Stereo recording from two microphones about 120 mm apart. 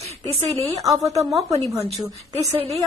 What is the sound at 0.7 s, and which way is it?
Speech, 30° right (ahead or behind).